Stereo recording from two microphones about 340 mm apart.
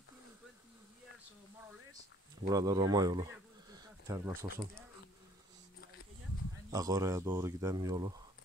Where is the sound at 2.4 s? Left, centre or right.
Centre.